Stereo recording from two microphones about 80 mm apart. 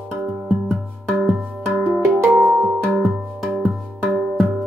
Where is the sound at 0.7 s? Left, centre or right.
Centre.